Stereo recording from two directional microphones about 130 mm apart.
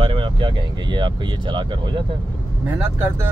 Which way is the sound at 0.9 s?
35° right (ahead or behind).